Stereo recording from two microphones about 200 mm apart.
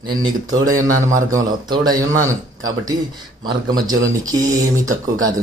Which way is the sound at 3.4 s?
20° right (ahead or behind).